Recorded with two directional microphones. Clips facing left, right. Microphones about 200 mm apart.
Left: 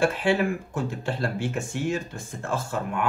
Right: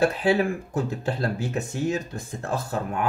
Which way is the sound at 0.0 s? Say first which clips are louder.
Right 1 dB; 35° right (ahead or behind).